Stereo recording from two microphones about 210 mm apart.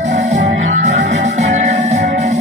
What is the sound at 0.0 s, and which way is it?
Music, 35° right (ahead or behind).